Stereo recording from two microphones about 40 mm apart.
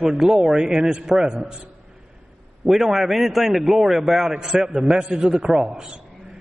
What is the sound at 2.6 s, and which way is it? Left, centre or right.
Speech, right.